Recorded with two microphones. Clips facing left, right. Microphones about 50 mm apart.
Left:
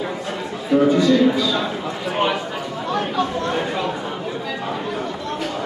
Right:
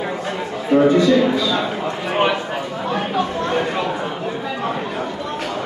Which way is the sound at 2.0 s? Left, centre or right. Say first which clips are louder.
Right 2 dB; right.